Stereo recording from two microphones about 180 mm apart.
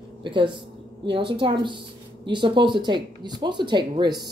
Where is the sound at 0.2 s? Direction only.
25° right (ahead or behind).